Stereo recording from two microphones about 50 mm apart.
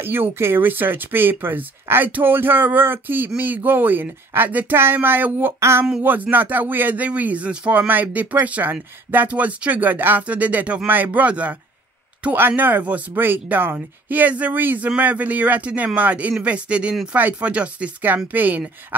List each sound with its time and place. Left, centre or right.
0.0 s speech: right
12.4 s speech: right
18.0 s speech: right